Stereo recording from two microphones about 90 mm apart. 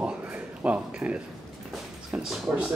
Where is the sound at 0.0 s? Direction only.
15° right (ahead or behind).